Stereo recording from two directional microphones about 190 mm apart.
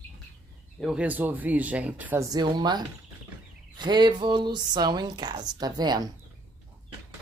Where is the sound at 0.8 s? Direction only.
5° right (ahead or behind); by 6.1 s 20° right (ahead or behind).